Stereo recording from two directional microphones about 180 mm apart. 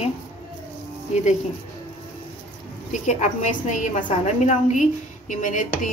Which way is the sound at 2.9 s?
40° left (ahead or behind).